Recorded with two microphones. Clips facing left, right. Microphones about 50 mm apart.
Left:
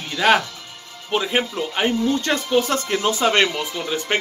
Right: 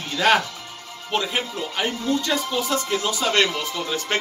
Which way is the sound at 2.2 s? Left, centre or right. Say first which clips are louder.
Left 4 dB; left.